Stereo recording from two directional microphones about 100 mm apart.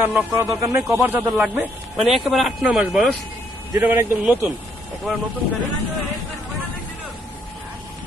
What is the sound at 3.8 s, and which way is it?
Speech, 25° right (ahead or behind).